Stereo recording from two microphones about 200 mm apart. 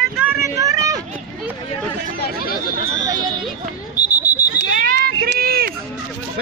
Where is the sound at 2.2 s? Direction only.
50° left (ahead or behind).